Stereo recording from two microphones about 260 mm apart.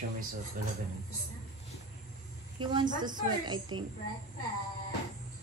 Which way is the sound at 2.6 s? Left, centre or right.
Centre.